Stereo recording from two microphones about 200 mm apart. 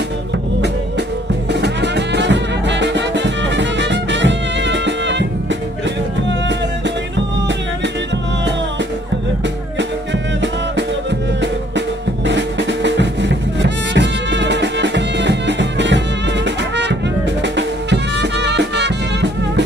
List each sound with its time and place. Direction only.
1.5 s music: 60° right (ahead or behind)
12.3 s music: 60° right (ahead or behind)
17.4 s music: 60° right (ahead or behind)